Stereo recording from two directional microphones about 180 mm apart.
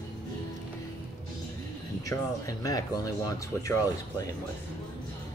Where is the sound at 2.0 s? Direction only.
20° left (ahead or behind).